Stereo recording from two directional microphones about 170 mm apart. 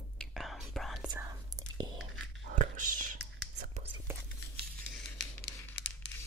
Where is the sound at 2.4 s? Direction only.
45° right (ahead or behind).